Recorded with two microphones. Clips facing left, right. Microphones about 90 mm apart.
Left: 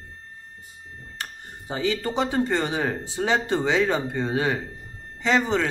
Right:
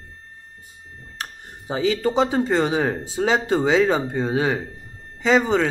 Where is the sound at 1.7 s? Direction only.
15° right (ahead or behind).